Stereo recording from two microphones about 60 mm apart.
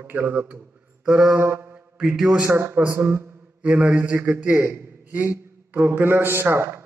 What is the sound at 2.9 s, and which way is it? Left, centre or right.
Speech, right.